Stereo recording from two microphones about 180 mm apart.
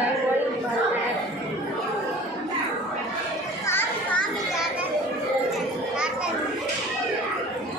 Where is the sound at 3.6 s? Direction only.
10° left (ahead or behind).